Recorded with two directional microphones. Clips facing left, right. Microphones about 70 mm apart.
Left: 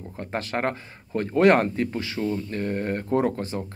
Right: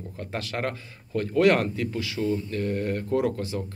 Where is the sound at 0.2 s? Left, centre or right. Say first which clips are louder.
Left 3 dB; left.